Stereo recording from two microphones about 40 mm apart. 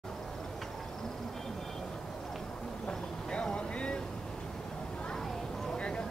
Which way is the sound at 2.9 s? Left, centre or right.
Centre.